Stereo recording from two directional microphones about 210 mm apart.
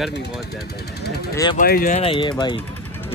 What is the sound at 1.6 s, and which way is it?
Speech, 40° left (ahead or behind).